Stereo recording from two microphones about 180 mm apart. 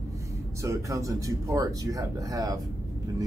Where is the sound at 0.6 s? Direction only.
15° right (ahead or behind).